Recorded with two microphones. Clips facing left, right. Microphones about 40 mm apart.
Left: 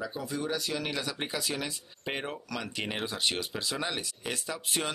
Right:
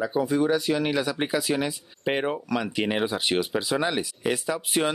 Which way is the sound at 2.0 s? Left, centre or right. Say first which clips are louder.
Right 10 dB; right.